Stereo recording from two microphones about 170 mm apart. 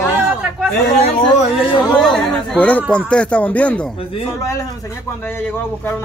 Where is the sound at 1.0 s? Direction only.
40° left (ahead or behind).